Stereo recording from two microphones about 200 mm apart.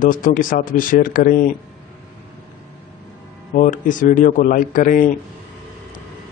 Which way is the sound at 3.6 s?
40° left (ahead or behind).